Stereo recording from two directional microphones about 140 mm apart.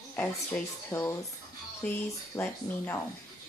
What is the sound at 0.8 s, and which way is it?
Speech, 15° left (ahead or behind).